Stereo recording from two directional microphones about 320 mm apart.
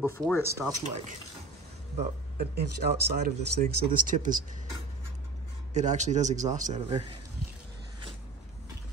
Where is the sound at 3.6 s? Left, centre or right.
Right.